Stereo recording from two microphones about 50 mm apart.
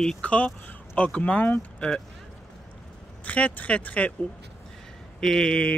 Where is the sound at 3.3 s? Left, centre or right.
Left.